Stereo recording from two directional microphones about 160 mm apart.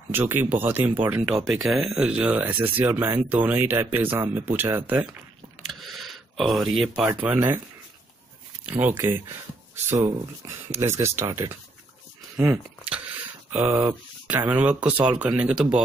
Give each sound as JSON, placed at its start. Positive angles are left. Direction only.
{"t": 0.1, "sound": "speech", "side_deg": -15}
{"t": 1.5, "sound": "speech", "side_deg": 0}
{"t": 5.6, "sound": "a sound", "side_deg": 0}
{"t": 7.1, "sound": "speech", "side_deg": -15}
{"t": 8.6, "sound": "speech", "side_deg": -10}